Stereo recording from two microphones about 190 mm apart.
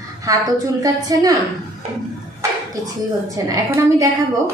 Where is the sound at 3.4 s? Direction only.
15° right (ahead or behind).